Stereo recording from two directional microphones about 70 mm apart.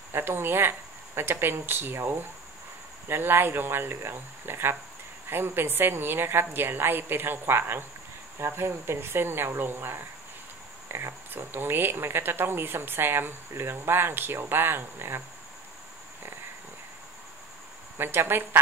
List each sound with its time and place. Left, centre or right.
0.1 s speech: right
17.9 s speech: right